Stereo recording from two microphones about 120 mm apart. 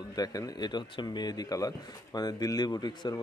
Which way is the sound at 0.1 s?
30° left (ahead or behind).